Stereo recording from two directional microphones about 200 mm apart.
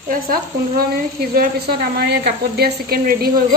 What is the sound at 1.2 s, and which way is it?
A woman's voice, 50° right (ahead or behind).